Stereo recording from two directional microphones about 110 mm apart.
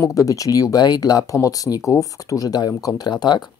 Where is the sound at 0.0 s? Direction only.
30° left (ahead or behind).